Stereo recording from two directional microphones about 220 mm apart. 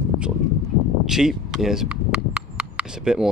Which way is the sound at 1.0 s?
Centre (ahead or behind).